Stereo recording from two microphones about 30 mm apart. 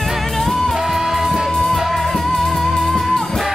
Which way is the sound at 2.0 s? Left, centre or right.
Centre.